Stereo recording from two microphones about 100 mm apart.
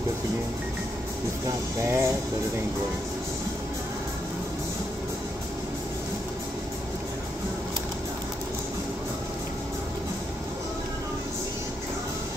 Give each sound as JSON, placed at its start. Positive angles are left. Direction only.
{"t": 1.8, "sound": "speech", "side_deg": -30}